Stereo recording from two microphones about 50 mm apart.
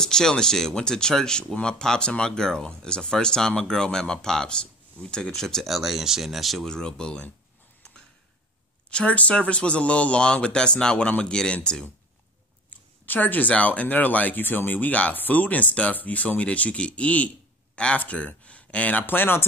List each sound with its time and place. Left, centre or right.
0.0 s speech: centre
6.6 s speech: centre
8.9 s speech: left
12.6 s speech: left
19.0 s speech: left